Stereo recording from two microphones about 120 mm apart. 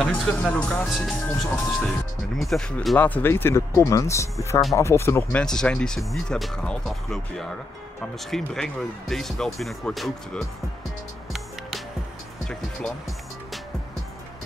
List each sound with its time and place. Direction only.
0.1 s speech: 10° left (ahead or behind)
3.0 s speech: 15° left (ahead or behind)
5.4 s speech: 5° left (ahead or behind)